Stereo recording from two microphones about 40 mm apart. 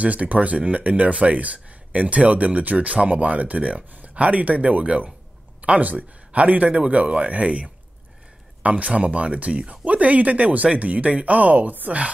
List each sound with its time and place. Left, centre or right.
0.0 s speech: right